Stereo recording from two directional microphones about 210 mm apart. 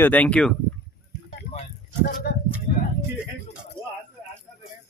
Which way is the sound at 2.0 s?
45° left (ahead or behind).